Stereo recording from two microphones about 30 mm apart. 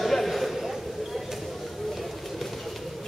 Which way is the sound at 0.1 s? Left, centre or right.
Centre.